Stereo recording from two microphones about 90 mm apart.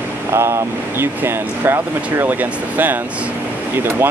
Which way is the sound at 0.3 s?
30° right (ahead or behind).